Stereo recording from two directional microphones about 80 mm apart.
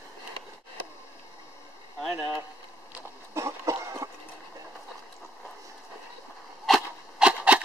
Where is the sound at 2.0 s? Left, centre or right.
Centre.